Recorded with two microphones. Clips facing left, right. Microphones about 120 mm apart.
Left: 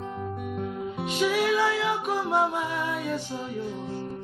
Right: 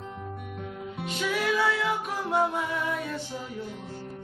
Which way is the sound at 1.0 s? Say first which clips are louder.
Left 4 dB; 15° left (ahead or behind).